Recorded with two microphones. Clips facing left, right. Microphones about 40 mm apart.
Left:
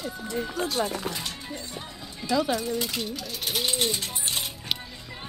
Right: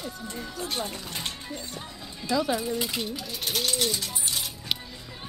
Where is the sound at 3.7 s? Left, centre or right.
Left.